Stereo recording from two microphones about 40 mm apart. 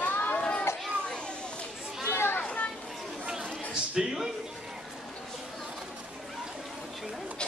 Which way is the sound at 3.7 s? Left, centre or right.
Centre.